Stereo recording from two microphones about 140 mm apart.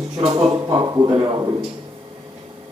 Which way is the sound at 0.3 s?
30° right (ahead or behind).